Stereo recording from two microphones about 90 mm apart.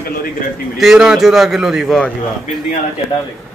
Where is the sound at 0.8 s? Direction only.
5° right (ahead or behind).